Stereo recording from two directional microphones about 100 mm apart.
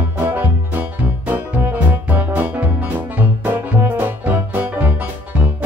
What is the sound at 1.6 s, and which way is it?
Music, 20° right (ahead or behind).